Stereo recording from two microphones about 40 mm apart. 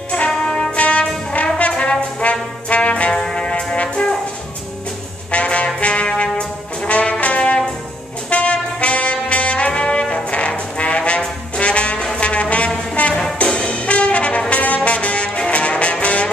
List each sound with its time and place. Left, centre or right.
0.3 s music: centre
0.7 s brass instrument: left
3.1 s brass instrument: centre
5.3 s brass instrument: left
12.9 s music: left
13.2 s brass instrument: left